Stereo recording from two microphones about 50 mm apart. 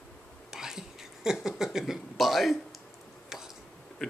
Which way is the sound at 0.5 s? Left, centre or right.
Centre.